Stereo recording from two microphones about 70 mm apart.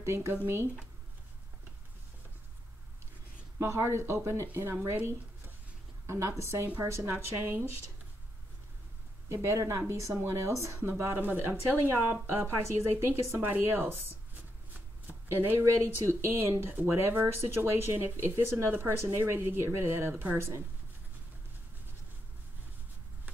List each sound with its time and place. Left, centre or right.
0.0 s speech: right
3.5 s speech: right
6.0 s speech: right
9.3 s speech: right
11.0 s speech: right
15.6 s speech: right